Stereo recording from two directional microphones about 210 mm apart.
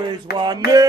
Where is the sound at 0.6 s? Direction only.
45° left (ahead or behind).